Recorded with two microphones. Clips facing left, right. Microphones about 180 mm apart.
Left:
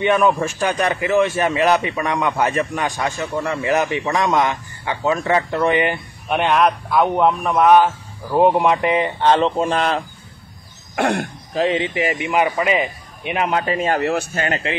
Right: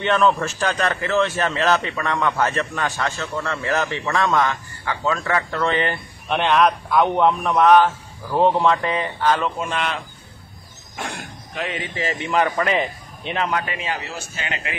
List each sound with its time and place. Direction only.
0.0 s a man's voice: 10° left (ahead or behind); by 10.0 s 35° left (ahead or behind)
11.0 s speech: 65° left (ahead or behind)
11.5 s speech: 25° left (ahead or behind)
11.9 s a man's voice: 15° left (ahead or behind)
13.7 s speech: 45° left (ahead or behind)